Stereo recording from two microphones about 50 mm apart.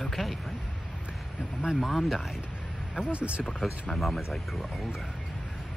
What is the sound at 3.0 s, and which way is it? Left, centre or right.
Speech, right.